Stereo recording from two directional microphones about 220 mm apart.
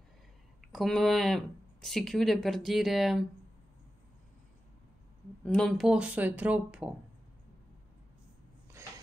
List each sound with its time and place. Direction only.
0.6 s speech: centre (ahead or behind)
5.4 s speech: 5° left (ahead or behind)